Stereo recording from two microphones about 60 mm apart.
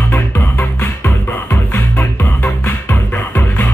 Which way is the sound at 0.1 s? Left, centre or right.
Left.